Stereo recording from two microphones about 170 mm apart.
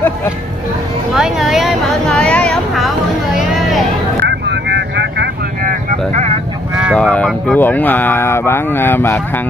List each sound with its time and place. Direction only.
1.1 s vehicle: 5° right (ahead or behind)
3.3 s a sound: centre (ahead or behind)
4.2 s vehicle: 85° right; by 5.8 s 70° right (ahead or behind)
6.1 s vehicle: 40° right (ahead or behind)
6.8 s speech: 5° left (ahead or behind)